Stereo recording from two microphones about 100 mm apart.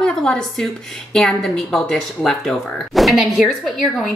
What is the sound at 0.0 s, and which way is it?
Speech, 5° left (ahead or behind).